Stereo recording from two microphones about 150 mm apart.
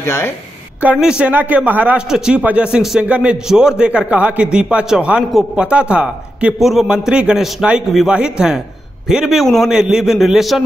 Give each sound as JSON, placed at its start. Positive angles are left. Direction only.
{"t": 0.0, "sound": "a woman's voice", "side_deg": 15}
{"t": 0.9, "sound": "a man's voice", "side_deg": -5}